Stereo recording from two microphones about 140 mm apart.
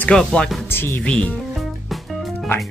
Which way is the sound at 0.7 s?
15° left (ahead or behind).